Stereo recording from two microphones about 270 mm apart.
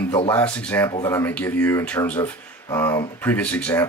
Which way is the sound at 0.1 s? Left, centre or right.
Centre.